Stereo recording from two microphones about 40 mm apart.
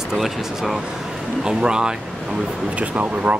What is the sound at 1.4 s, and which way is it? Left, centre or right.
Speech, centre.